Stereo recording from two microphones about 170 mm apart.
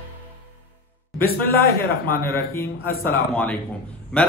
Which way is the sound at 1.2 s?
60° left (ahead or behind).